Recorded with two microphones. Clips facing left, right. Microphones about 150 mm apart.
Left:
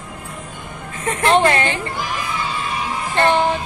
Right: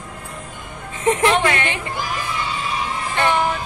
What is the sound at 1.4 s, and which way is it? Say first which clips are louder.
Speech: left 4 dB; 35° left (ahead or behind).